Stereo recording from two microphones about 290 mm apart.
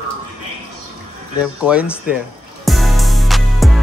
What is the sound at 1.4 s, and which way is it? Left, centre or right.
Music, centre.